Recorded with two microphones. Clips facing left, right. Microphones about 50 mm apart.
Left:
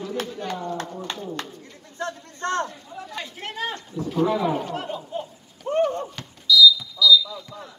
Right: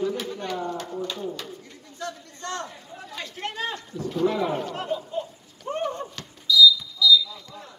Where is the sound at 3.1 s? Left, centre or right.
Centre.